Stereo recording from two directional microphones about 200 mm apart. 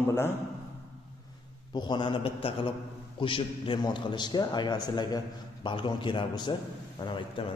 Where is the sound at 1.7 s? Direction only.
20° left (ahead or behind).